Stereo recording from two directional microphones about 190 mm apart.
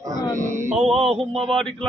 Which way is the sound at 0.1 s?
15° right (ahead or behind).